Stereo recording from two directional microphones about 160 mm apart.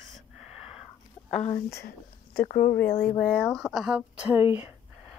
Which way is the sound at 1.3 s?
50° left (ahead or behind).